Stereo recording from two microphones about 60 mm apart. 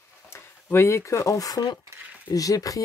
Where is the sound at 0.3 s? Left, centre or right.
Left.